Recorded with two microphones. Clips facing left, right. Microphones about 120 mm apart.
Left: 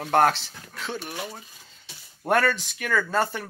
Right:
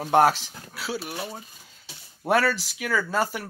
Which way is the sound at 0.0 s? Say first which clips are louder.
Right 1 dB; 10° right (ahead or behind).